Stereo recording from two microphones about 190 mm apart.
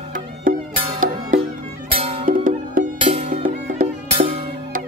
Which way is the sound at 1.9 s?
30° right (ahead or behind).